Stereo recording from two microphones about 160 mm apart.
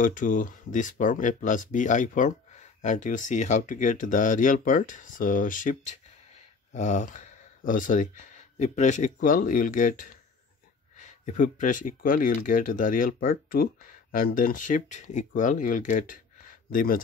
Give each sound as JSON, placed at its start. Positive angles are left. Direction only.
{"t": 0.0, "sound": "speech", "side_deg": 55}